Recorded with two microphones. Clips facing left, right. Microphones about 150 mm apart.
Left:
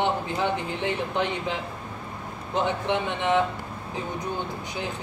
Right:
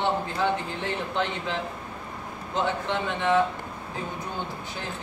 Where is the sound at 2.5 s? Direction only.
20° left (ahead or behind).